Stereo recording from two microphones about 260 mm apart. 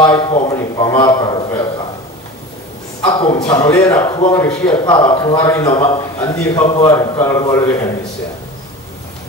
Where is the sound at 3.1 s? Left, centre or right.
Centre.